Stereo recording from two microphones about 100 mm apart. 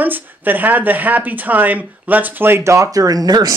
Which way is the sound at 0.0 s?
20° right (ahead or behind).